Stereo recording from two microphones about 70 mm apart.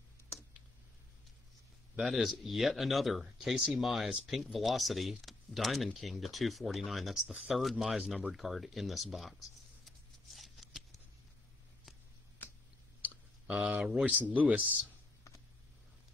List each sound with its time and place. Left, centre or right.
2.0 s speech: centre
9.8 s shuffling cards: centre
13.5 s speech: centre